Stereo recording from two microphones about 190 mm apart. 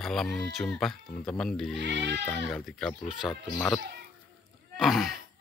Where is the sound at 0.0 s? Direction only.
Centre (ahead or behind).